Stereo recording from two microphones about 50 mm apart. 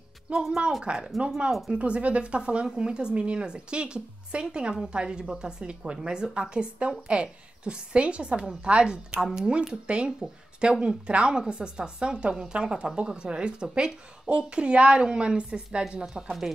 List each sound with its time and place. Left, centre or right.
0.3 s a woman's voice: right
16.1 s a woman's voice: centre